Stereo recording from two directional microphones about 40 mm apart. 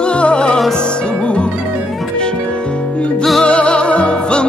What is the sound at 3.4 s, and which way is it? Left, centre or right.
Music, left.